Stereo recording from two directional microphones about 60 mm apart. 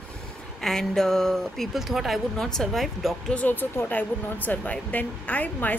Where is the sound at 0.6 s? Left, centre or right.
Centre.